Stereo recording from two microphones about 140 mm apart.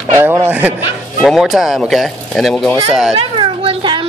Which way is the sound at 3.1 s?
35° right (ahead or behind).